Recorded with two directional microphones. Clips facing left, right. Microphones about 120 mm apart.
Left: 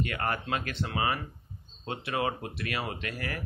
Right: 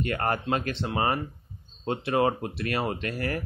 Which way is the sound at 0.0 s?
35° right (ahead or behind).